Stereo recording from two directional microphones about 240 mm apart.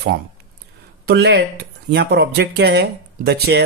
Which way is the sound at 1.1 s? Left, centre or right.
Right.